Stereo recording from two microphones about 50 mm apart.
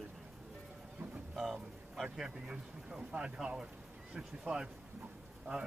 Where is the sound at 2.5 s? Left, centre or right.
Right.